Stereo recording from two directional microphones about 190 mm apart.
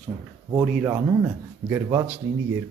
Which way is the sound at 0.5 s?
10° right (ahead or behind).